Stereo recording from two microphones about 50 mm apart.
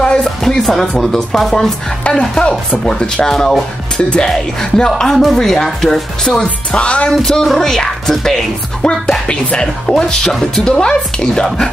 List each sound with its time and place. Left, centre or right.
0.0 s music: centre
0.4 s speech: centre
6.4 s speech: left; by 8.4 s centre
8.8 s speech: centre